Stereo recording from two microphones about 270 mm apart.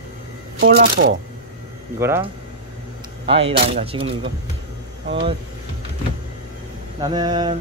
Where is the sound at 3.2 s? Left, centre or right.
Right.